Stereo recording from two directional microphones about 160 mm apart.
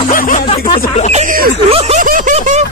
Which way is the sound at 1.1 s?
45° right (ahead or behind).